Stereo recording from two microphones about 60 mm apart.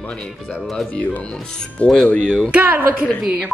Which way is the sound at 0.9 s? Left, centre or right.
Left.